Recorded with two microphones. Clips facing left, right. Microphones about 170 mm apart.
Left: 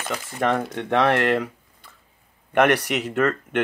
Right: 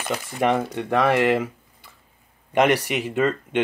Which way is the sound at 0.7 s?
Centre (ahead or behind).